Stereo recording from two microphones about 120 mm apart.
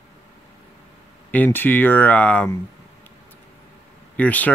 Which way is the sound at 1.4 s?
15° left (ahead or behind).